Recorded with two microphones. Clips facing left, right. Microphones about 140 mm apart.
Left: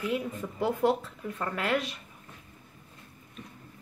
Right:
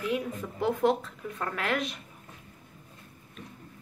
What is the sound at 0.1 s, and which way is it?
Speech, centre (ahead or behind).